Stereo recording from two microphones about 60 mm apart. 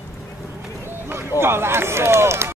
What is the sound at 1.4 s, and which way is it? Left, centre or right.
Speech, right.